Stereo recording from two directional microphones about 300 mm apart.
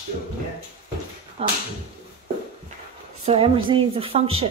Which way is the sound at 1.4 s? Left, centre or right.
Centre.